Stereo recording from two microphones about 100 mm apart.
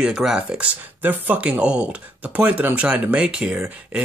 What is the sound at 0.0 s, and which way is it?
Speech, 5° right (ahead or behind).